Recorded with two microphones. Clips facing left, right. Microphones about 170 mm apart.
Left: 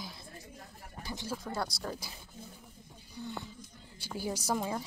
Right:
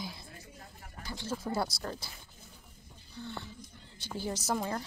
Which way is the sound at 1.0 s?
15° left (ahead or behind).